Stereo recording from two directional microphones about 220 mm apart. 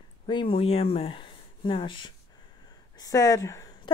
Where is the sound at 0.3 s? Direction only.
20° left (ahead or behind).